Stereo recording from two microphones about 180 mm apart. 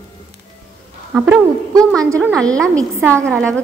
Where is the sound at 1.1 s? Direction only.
10° right (ahead or behind).